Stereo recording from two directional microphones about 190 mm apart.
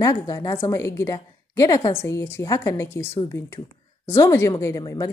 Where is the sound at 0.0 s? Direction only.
20° left (ahead or behind).